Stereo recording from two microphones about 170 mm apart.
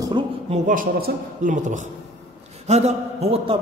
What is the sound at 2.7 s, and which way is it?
Speech, 40° right (ahead or behind).